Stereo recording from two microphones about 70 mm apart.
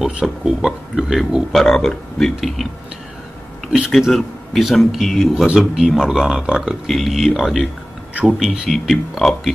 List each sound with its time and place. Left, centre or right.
0.2 s speech: centre
1.5 s a man's voice: centre
4.0 s a man's voice: centre
6.9 s a man's voice: centre
8.1 s speech: centre
8.4 s a man's voice: centre